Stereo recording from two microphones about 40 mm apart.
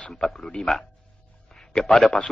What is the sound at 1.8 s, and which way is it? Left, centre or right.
Speech, centre.